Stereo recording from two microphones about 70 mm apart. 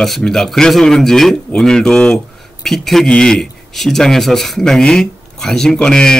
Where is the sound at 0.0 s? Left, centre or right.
Centre.